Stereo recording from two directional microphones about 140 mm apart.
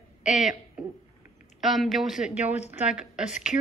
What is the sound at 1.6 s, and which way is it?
Speech, centre (ahead or behind).